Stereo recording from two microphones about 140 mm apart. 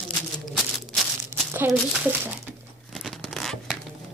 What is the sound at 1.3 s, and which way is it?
Speech, 15° right (ahead or behind).